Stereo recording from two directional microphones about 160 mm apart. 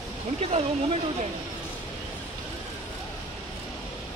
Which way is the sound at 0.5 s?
40° right (ahead or behind).